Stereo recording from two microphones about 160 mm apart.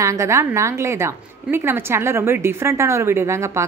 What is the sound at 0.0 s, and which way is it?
A woman's voice, 20° right (ahead or behind).